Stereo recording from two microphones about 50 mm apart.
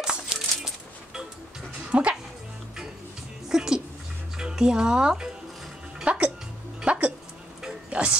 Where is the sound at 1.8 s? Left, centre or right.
Right.